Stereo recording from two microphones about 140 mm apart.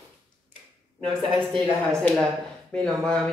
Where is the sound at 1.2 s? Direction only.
35° right (ahead or behind).